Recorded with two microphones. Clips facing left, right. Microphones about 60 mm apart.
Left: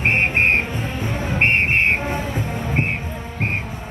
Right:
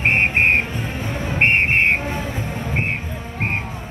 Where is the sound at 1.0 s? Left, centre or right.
Left.